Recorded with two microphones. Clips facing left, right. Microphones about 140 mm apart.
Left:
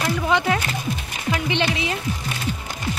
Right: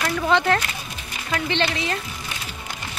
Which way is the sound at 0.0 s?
10° left (ahead or behind).